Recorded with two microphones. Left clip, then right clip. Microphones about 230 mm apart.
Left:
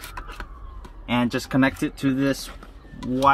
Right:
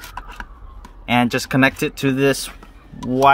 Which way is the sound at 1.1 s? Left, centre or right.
Right.